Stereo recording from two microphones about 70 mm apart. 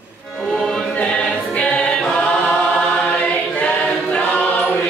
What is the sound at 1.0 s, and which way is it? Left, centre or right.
Choir, centre.